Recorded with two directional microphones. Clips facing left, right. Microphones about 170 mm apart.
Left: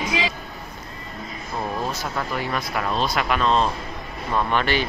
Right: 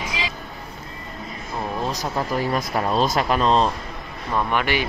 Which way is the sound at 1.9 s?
35° right (ahead or behind).